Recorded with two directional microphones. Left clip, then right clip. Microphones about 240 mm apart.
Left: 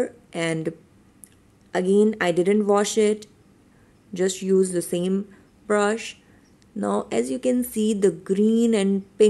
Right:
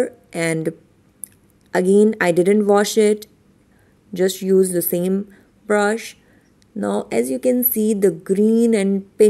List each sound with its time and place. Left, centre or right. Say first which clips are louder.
0.0 s a woman's voice: right 5 dB; centre